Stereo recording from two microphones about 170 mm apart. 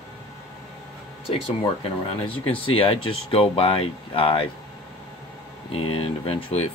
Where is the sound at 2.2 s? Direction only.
30° left (ahead or behind).